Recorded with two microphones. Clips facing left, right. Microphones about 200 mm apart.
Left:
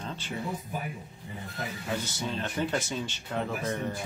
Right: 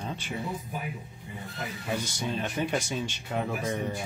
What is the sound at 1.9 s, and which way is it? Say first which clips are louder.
Speech: right 2 dB; 15° right (ahead or behind).